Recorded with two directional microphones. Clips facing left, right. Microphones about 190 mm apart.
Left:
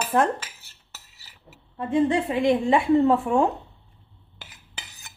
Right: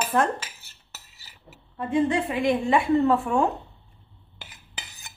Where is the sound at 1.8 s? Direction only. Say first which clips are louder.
Left 1 dB; 25° left (ahead or behind).